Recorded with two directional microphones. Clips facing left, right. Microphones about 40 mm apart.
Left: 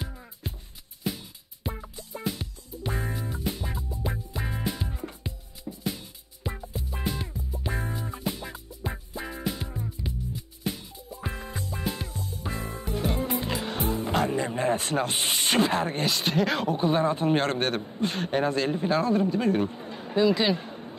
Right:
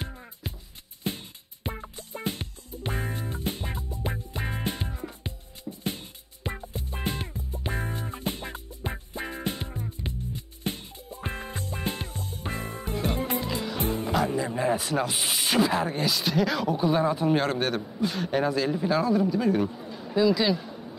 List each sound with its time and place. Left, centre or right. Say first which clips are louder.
1.0 s music: even; right
13.4 s music: even; left
13.7 s music: even; right
14.1 s music: even; left
15.0 s speech: left 1 dB; centre
15.9 s speech: even; left
18.6 s speech: even; centre
19.2 s speech: even; left